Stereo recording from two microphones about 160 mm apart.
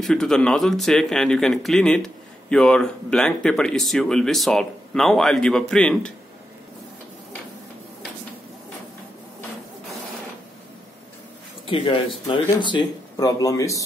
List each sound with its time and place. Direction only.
0.0 s speech: 5° left (ahead or behind)
11.6 s speech: 35° left (ahead or behind)